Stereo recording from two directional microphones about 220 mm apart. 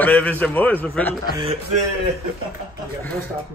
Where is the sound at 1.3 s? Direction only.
25° right (ahead or behind).